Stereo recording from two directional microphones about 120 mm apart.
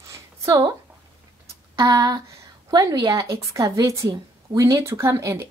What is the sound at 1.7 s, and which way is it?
A woman's voice, 30° right (ahead or behind).